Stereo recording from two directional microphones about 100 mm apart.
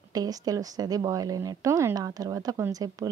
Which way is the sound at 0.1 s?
40° right (ahead or behind).